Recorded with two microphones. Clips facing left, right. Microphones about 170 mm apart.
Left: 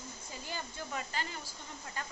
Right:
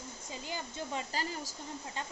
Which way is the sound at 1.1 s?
35° right (ahead or behind).